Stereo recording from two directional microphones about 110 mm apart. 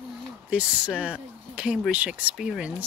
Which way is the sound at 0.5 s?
10° right (ahead or behind).